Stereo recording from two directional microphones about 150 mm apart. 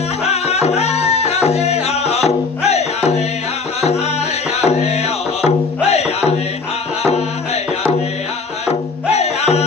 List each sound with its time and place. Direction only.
0.2 s music: 45° left (ahead or behind)
4.6 s music: 45° left (ahead or behind)
8.6 s music: 45° left (ahead or behind)